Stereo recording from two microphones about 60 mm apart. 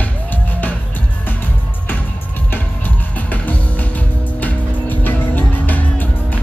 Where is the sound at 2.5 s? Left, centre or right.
Left.